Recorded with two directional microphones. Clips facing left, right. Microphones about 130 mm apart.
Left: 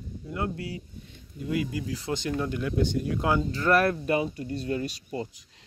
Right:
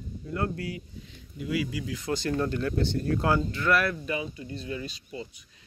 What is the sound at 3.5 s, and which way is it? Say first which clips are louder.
Speech: left 3 dB; 40° left (ahead or behind).